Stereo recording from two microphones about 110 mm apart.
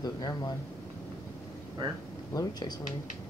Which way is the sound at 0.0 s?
40° left (ahead or behind).